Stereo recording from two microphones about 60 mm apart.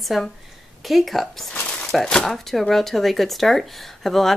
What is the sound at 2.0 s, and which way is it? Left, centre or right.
Speech, centre.